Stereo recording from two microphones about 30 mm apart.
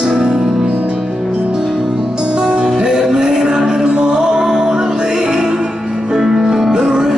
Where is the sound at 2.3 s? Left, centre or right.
Right.